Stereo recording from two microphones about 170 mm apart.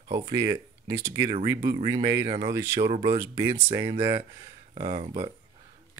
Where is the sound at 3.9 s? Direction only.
30° right (ahead or behind).